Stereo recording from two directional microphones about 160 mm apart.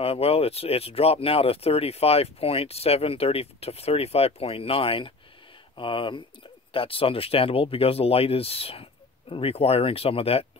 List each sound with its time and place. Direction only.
0.0 s speech: 35° left (ahead or behind)